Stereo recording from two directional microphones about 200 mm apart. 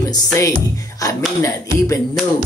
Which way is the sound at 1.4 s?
15° left (ahead or behind).